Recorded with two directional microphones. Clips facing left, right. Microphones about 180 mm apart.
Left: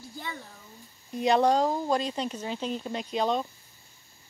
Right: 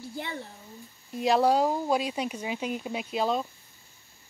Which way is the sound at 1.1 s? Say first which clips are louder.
Even; centre (ahead or behind).